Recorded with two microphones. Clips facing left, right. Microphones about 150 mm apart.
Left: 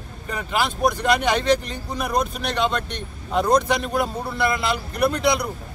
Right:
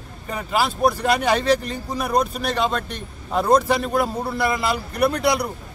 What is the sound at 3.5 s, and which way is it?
A man's voice, 5° right (ahead or behind).